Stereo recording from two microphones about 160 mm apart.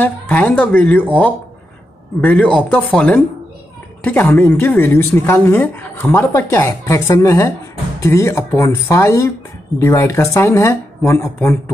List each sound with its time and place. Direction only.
0.0 s a woman's voice: 10° left (ahead or behind)
2.2 s a woman's voice: 10° left (ahead or behind)